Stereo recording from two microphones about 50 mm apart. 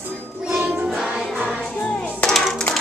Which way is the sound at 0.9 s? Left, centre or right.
Centre.